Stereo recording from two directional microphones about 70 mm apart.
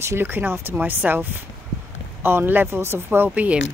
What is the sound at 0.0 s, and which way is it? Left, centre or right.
Speech, right.